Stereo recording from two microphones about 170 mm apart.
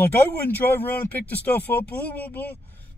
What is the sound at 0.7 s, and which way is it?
Speech, 10° left (ahead or behind).